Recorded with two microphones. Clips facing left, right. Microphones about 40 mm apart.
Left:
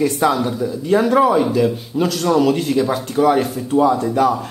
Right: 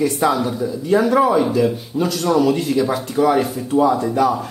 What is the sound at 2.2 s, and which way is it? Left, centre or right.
Speech, left.